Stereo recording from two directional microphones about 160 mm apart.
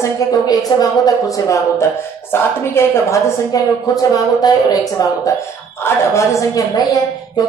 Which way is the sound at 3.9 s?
25° left (ahead or behind).